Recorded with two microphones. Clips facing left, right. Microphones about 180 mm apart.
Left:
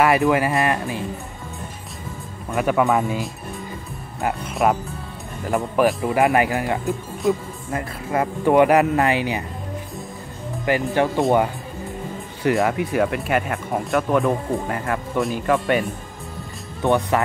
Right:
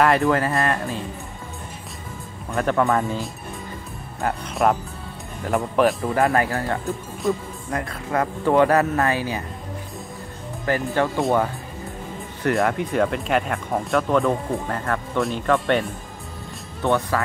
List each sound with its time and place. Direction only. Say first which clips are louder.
0.0 s speech: left 1 dB; 10° left (ahead or behind)
2.5 s speech: left 1 dB; 10° left (ahead or behind)
6.1 s speech: left 2 dB; 15° left (ahead or behind)
10.6 s speech: left 2 dB; 15° left (ahead or behind)
11.1 s speech: left 3 dB; centre (ahead or behind)
12.4 s speech: left 2 dB; 5° left (ahead or behind)
16.8 s speech: left 2 dB; 20° left (ahead or behind)